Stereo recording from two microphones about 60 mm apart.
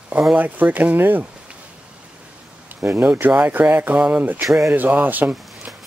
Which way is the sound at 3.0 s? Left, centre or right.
Right.